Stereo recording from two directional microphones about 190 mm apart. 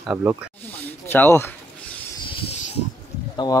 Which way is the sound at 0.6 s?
10° left (ahead or behind).